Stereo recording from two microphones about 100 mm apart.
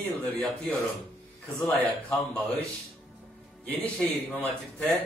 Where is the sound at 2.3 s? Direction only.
15° left (ahead or behind).